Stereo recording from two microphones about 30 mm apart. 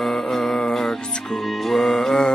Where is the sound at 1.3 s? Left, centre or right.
Centre.